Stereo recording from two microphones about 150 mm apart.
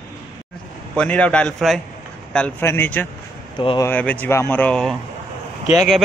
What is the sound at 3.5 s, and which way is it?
Speech, 35° left (ahead or behind).